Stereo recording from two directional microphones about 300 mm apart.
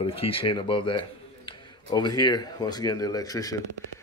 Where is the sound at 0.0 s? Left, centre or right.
Centre.